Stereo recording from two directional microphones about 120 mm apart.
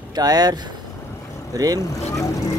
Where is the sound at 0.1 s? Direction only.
35° right (ahead or behind).